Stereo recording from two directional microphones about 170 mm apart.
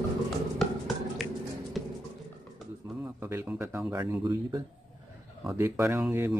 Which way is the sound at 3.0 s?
15° right (ahead or behind).